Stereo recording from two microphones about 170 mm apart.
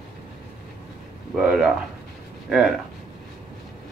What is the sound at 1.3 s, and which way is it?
Speech, 5° right (ahead or behind).